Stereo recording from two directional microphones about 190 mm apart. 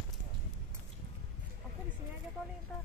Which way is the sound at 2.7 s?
5° left (ahead or behind).